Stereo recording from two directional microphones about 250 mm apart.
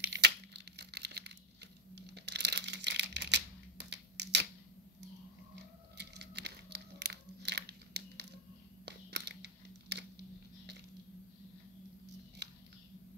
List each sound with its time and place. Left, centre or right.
0.0 s tearing: right
2.0 s crumpling: right
5.9 s a sound: right